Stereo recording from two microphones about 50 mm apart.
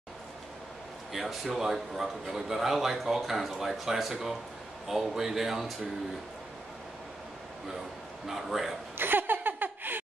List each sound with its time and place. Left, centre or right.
1.1 s speech: centre
8.3 s speech: centre
8.9 s laughter: right